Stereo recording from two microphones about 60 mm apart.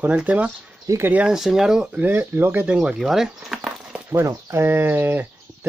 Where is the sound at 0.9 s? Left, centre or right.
Right.